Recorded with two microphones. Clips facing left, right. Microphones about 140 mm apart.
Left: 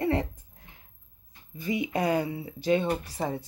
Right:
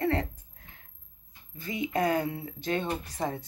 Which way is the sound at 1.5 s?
10° left (ahead or behind).